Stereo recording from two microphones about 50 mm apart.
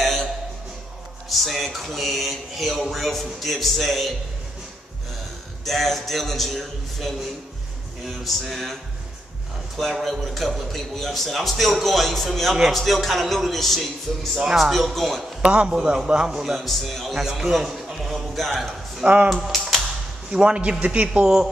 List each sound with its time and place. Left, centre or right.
0.0 s a sound: centre
1.3 s speech: centre
5.7 s speech: centre
9.8 s speech: centre
14.3 s a man's voice: centre
15.5 s a man's voice: centre
16.5 s speech: centre
17.1 s a sound: centre
20.2 s a man's voice: centre